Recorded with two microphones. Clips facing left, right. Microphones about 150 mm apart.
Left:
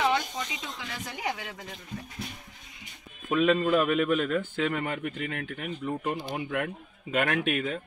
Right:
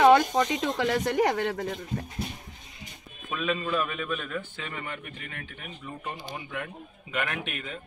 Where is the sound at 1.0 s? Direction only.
75° right (ahead or behind).